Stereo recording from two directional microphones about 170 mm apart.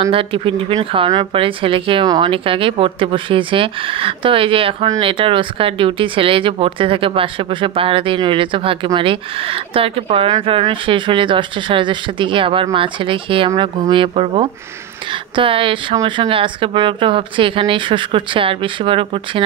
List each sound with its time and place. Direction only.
0.1 s speech: 30° right (ahead or behind)